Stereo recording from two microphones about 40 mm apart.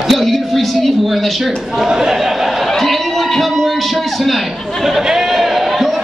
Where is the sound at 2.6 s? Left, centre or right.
Centre.